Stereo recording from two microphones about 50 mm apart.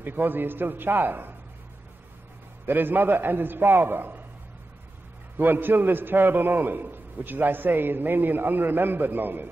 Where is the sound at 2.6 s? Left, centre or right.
Right.